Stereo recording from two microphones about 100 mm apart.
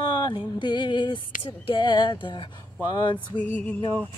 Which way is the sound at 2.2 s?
55° left (ahead or behind).